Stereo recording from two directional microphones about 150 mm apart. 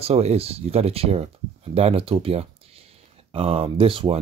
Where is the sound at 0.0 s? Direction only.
45° right (ahead or behind).